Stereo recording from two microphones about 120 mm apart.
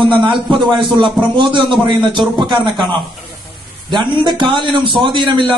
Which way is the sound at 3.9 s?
40° right (ahead or behind).